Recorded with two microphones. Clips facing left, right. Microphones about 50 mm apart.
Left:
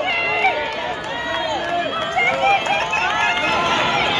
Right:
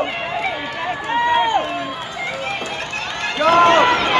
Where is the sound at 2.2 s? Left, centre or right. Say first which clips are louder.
Left 10 dB; left.